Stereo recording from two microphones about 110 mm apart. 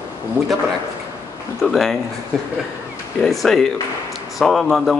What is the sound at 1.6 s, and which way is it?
Speech, centre (ahead or behind).